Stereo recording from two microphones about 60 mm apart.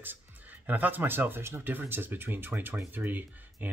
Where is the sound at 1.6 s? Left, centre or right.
Right.